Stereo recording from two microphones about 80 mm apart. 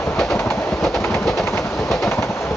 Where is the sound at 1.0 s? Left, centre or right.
Left.